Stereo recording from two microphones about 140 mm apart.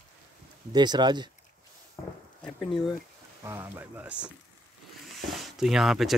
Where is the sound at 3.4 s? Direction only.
20° right (ahead or behind).